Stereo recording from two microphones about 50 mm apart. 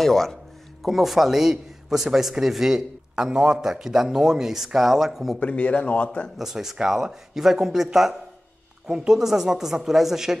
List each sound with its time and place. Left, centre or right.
0.0 s a man's voice: centre
5.4 s speech: left
6.3 s a man's voice: centre